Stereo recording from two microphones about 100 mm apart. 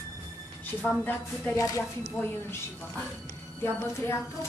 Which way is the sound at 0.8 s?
20° left (ahead or behind).